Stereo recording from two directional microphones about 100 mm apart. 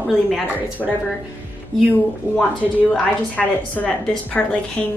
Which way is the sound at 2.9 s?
15° left (ahead or behind).